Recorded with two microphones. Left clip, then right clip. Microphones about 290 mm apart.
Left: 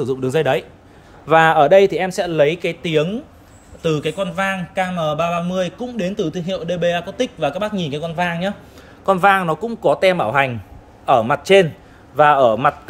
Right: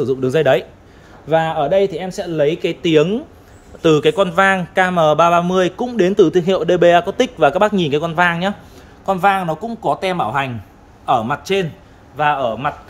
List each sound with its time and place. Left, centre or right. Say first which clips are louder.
0.0 s speech: right 3 dB; centre
1.2 s a man's voice: left 4 dB; centre
9.0 s a man's voice: left 1 dB; centre